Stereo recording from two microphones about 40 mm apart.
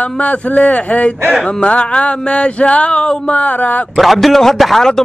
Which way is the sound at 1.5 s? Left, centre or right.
Left.